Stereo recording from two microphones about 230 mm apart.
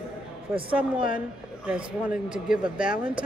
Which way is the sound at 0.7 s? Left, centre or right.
Centre.